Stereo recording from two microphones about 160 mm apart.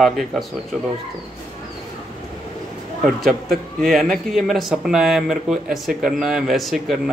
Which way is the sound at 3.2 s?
Centre (ahead or behind).